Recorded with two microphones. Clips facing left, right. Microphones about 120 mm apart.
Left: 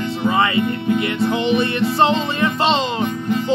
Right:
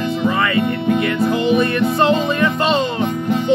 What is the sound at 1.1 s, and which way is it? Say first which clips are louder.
Music: right 2 dB; 25° left (ahead or behind).